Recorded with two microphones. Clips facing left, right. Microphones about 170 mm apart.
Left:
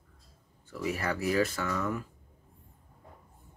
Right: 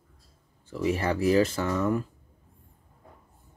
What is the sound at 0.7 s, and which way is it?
Speech, 25° right (ahead or behind).